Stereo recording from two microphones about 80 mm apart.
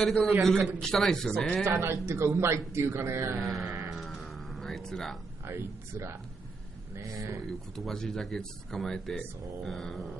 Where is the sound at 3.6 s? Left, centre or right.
Right.